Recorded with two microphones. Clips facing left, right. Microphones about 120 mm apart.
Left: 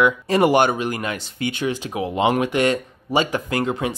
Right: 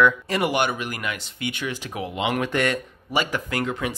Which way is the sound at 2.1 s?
35° left (ahead or behind).